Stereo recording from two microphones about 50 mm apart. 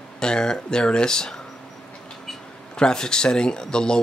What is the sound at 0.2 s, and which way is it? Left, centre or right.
Speech, centre.